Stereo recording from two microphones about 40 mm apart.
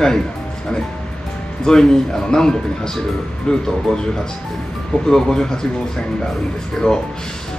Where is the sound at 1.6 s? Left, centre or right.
Centre.